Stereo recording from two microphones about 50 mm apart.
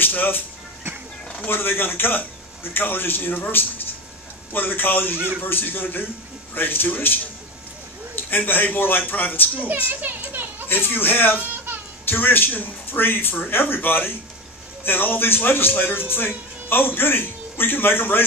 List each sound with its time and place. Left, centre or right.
0.0 s a man's voice: left
1.5 s a man's voice: left
8.3 s a man's voice: left
9.8 s a child's voice: right
10.7 s a man's voice: left